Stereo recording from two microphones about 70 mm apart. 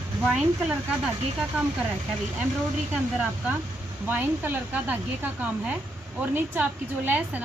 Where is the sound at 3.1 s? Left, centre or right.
Right.